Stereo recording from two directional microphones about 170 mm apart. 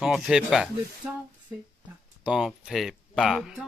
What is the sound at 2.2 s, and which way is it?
Speech, 5° right (ahead or behind).